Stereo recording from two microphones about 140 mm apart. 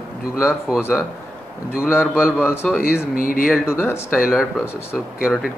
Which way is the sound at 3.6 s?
20° left (ahead or behind).